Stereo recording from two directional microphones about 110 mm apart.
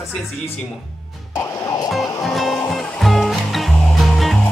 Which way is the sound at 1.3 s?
30° left (ahead or behind).